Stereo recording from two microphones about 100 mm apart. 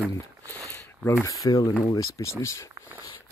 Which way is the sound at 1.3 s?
40° left (ahead or behind).